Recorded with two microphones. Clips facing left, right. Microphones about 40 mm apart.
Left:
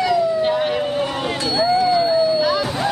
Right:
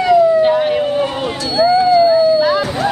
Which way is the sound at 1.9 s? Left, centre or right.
Centre.